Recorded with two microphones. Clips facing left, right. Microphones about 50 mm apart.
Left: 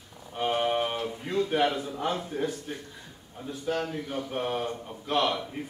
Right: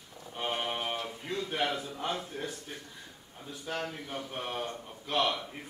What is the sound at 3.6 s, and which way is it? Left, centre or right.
A man's voice, centre.